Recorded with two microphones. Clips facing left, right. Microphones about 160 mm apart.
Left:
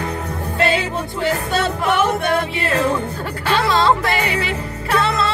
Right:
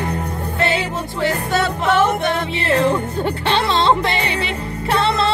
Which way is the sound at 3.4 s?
25° right (ahead or behind).